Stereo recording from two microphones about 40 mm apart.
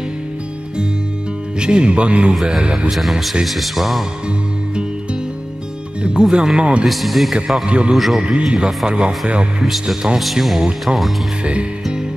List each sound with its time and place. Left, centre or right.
1.6 s speech: right
2.9 s speech: centre
6.0 s speech: right
6.9 s speech: centre
7.6 s speech: right
7.9 s speech: centre
8.2 s speech: right
9.6 s speech: centre